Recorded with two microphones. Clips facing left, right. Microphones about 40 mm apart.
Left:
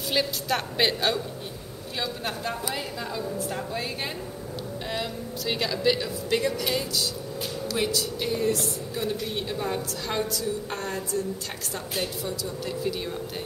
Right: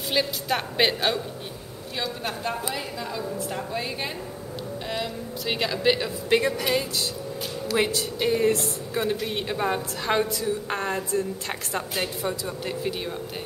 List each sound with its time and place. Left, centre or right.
0.1 s a woman's voice: centre
5.4 s a woman's voice: centre; by 12.9 s right